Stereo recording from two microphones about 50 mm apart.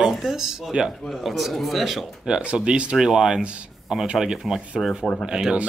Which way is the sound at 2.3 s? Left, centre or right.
Right.